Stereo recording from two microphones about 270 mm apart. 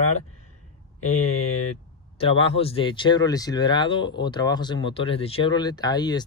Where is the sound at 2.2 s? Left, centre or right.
Left.